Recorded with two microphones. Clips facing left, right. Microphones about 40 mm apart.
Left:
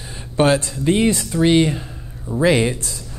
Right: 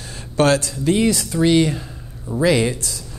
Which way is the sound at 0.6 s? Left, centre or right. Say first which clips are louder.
Left 1 dB; left.